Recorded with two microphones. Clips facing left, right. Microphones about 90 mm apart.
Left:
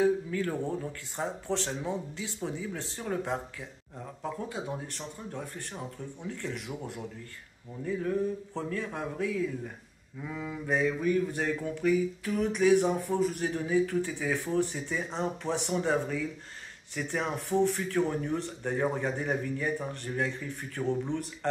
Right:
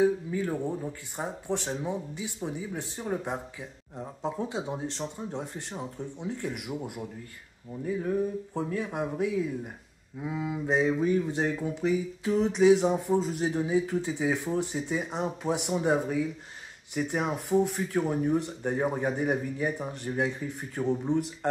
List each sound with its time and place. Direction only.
0.0 s speech: 15° right (ahead or behind)
8.5 s speech: 15° right (ahead or behind)